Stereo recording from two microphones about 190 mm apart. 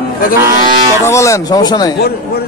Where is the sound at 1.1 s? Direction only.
15° left (ahead or behind).